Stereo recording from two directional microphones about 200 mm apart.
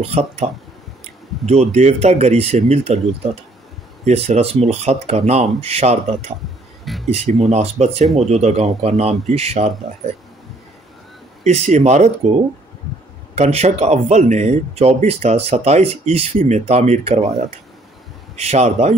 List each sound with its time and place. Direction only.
0.0 s speech: 30° right (ahead or behind)
4.0 s speech: 30° right (ahead or behind)
6.8 s a sound: centre (ahead or behind)
7.2 s speech: 35° right (ahead or behind)
11.4 s speech: 35° right (ahead or behind)
13.3 s speech: 30° right (ahead or behind)
18.3 s speech: 30° right (ahead or behind)